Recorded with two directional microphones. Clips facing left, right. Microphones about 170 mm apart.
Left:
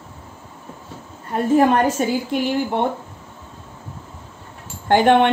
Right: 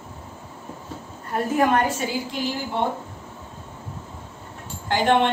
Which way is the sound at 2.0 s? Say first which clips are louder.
Left 7 dB; 50° left (ahead or behind).